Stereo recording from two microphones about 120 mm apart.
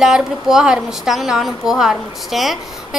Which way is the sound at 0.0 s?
5° right (ahead or behind).